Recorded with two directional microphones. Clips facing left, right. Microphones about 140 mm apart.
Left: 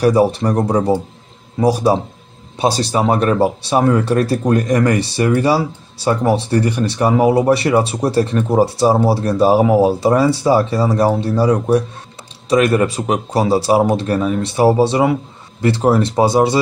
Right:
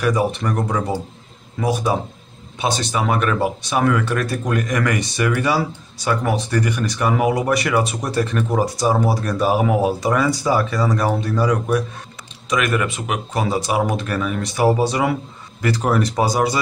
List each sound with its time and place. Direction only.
0.0 s speech: 35° left (ahead or behind)